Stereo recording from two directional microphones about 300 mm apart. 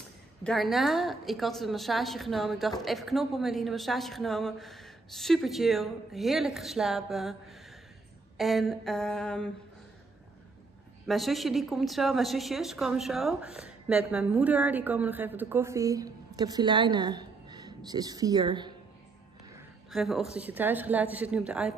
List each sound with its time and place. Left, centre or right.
0.4 s a woman's voice: centre
11.1 s a woman's voice: centre
19.9 s a woman's voice: centre